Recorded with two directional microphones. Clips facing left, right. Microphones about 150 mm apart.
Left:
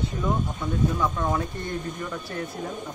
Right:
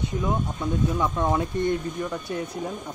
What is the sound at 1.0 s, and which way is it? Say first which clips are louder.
Speech: right 2 dB; 20° right (ahead or behind).